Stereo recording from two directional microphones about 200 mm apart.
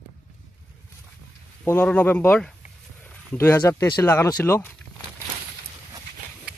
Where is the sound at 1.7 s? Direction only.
10° left (ahead or behind).